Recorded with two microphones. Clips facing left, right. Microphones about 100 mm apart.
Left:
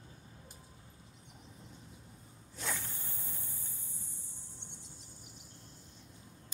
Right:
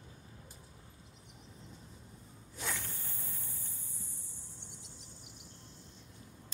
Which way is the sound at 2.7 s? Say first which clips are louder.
Left 2 dB; 15° left (ahead or behind).